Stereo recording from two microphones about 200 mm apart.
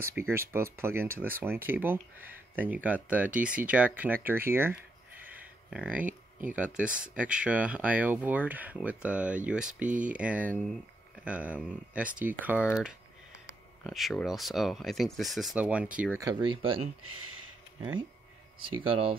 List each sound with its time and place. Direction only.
0.0 s speech: 10° right (ahead or behind)
5.2 s a sound: 5° right (ahead or behind)
6.5 s speech: 5° right (ahead or behind)
13.8 s speech: centre (ahead or behind); by 16.8 s 25° right (ahead or behind)
18.6 s speech: 25° right (ahead or behind)